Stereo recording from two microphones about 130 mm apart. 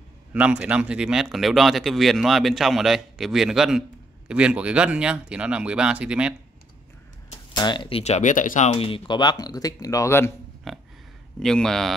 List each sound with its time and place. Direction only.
0.3 s speech: 10° right (ahead or behind)
7.5 s speech: 35° left (ahead or behind)
8.0 s speech: 70° left (ahead or behind)
8.7 s speech: 45° left (ahead or behind); by 10.3 s 20° left (ahead or behind)
10.7 s a sound: 5° right (ahead or behind)
11.3 s speech: 5° left (ahead or behind)